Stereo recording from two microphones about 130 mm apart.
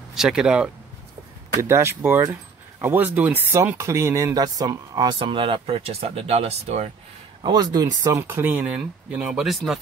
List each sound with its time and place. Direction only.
0.1 s speech: 5° right (ahead or behind)
1.6 s speech: 20° right (ahead or behind); by 6.9 s 55° right (ahead or behind)
7.4 s speech: 30° right (ahead or behind); by 9.8 s centre (ahead or behind)